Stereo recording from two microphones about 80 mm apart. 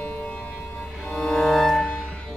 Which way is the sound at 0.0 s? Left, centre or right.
Centre.